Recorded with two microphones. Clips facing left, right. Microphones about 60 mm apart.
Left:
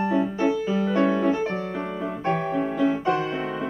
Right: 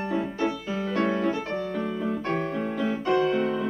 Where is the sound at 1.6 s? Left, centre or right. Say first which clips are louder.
Even; centre.